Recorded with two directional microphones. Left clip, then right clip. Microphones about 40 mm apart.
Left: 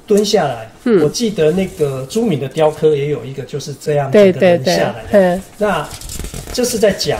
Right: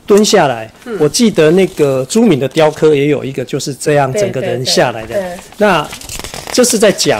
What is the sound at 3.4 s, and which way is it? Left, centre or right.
Speech, right.